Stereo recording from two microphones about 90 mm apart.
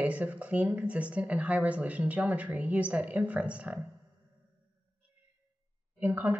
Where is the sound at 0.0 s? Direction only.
15° right (ahead or behind).